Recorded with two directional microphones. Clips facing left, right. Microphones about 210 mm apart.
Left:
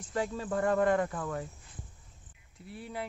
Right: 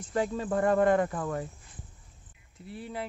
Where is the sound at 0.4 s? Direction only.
35° right (ahead or behind).